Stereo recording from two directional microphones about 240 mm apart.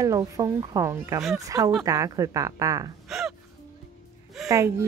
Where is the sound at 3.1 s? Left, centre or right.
Centre.